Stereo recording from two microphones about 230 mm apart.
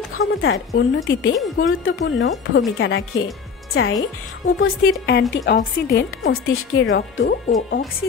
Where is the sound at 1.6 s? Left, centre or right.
Left.